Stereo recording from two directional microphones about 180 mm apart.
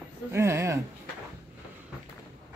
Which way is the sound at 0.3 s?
15° right (ahead or behind).